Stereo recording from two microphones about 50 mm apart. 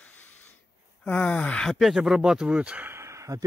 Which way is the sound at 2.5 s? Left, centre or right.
Right.